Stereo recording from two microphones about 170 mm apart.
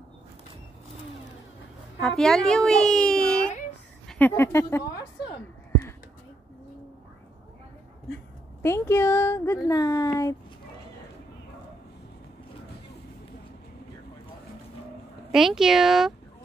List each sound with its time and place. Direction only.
2.0 s a woman's voice: centre (ahead or behind)
8.6 s speech: 15° left (ahead or behind)
15.3 s a woman's voice: centre (ahead or behind)